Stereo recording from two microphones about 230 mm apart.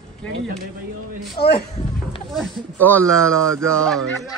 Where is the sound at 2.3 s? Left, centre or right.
Centre.